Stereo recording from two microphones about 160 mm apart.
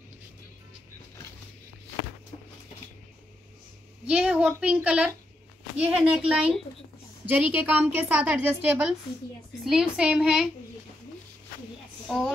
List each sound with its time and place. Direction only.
4.1 s a woman's voice: 5° right (ahead or behind)
12.1 s a woman's voice: centre (ahead or behind)